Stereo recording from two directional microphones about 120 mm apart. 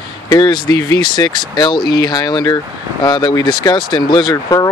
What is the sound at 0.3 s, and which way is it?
Speech, 35° left (ahead or behind).